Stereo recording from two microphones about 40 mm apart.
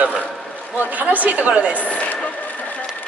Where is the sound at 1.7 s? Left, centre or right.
Left.